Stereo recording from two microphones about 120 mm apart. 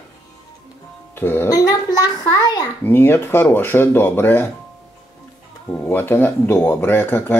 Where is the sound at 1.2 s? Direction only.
20° left (ahead or behind).